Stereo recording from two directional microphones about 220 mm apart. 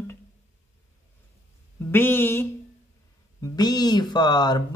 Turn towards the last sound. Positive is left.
turn(degrees=20)  # may be behind; listen again after turning